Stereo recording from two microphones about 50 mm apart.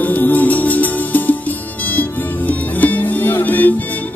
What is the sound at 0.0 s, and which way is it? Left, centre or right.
Music, left.